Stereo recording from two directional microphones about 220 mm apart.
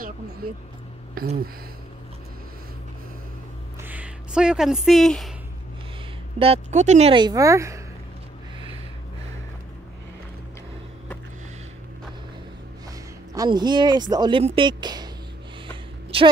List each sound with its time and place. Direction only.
3.8 s speech: 5° right (ahead or behind)
6.4 s speech: 30° right (ahead or behind); by 7.8 s 15° right (ahead or behind)
13.3 s speech: 15° right (ahead or behind)
16.1 s a woman's voice: 25° right (ahead or behind)